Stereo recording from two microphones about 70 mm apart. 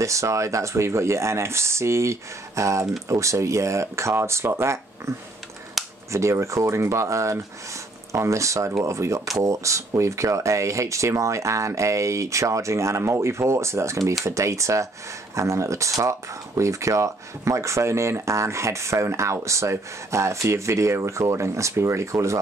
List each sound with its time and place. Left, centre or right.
0.0 s speech: right
5.8 s a sound: centre
6.1 s speech: right